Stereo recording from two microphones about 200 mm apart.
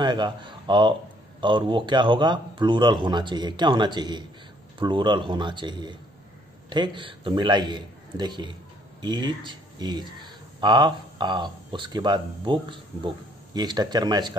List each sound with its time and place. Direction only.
0.0 s speech: 20° right (ahead or behind)